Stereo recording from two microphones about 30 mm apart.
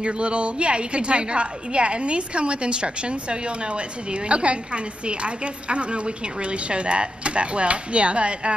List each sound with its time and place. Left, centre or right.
0.0 s a woman's voice: right